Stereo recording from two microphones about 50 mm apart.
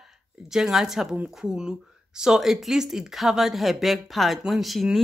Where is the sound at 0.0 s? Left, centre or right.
Centre.